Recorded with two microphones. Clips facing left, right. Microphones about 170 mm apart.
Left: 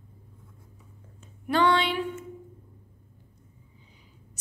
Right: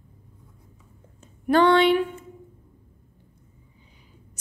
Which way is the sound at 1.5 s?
50° right (ahead or behind).